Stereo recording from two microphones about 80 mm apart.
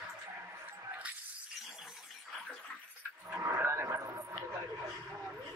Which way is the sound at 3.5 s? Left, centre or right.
Right.